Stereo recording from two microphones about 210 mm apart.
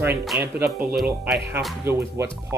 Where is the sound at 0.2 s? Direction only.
5° right (ahead or behind).